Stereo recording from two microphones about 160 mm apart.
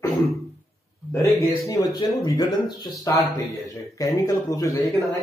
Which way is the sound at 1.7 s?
25° left (ahead or behind).